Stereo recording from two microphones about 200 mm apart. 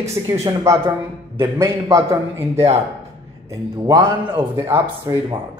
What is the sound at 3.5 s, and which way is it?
Speech, 20° right (ahead or behind).